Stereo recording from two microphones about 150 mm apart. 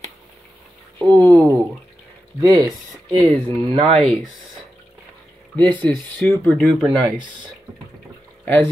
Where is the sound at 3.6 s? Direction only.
40° right (ahead or behind).